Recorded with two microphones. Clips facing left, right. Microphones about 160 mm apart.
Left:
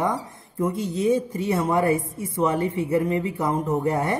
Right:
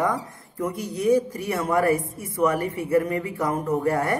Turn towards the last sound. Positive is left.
turn(degrees=20)  # may be behind; listen again after turning